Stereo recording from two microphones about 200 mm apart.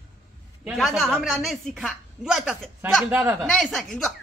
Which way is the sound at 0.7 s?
Centre (ahead or behind).